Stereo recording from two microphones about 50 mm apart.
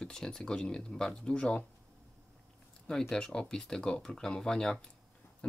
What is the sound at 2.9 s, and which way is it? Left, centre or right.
Speech, centre.